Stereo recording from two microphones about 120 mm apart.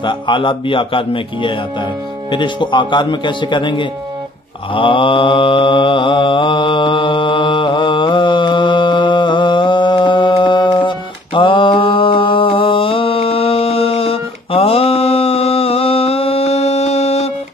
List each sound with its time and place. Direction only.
0.0 s speech: 45° left (ahead or behind)
4.7 s mantra: 45° left (ahead or behind); by 17.3 s 60° left (ahead or behind)